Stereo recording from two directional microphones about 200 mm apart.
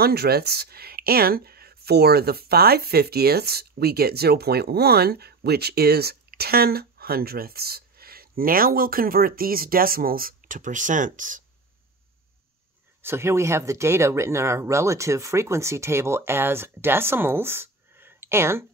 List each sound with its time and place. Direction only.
0.0 s speech: 50° right (ahead or behind)
13.0 s speech: 15° right (ahead or behind)